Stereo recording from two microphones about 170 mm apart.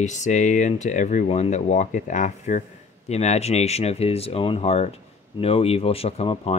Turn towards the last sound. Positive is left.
turn(degrees=35)  # may be behind; listen again after turning